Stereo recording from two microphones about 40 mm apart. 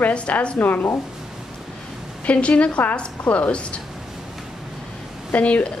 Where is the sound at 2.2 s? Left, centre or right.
Left.